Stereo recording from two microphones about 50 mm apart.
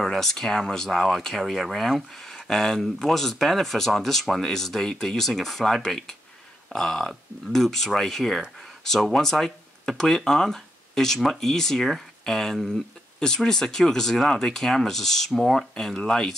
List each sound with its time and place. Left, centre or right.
0.0 s speech: centre